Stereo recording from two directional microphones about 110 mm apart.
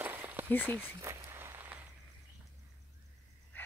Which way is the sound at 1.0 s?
25° right (ahead or behind).